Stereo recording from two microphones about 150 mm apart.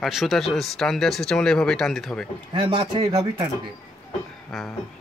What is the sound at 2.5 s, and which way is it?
Speech, 30° right (ahead or behind).